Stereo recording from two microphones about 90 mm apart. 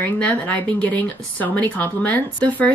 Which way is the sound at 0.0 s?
15° left (ahead or behind).